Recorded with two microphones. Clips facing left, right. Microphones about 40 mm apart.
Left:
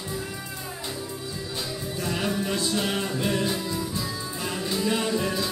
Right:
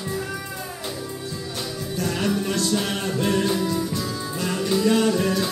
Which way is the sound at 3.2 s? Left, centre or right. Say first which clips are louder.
Right 8 dB; right.